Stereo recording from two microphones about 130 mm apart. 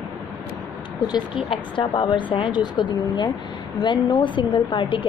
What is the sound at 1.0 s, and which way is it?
Speech, 35° left (ahead or behind).